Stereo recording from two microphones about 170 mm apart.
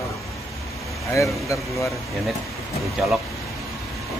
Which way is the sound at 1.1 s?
20° left (ahead or behind).